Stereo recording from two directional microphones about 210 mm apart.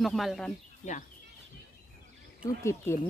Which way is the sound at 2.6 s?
15° left (ahead or behind).